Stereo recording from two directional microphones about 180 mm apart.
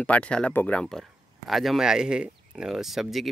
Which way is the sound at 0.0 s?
5° left (ahead or behind).